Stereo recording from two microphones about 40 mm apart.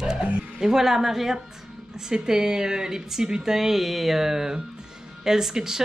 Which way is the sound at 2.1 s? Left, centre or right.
Centre.